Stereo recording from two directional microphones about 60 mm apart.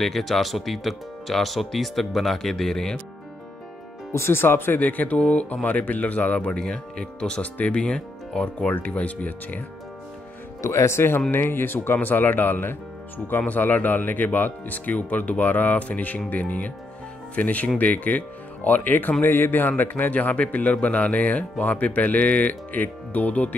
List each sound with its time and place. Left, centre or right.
0.0 s speech: centre
4.1 s speech: left
6.6 s speech: centre
10.6 s speech: left